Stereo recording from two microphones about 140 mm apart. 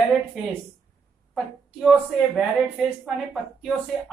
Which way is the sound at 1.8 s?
5° right (ahead or behind).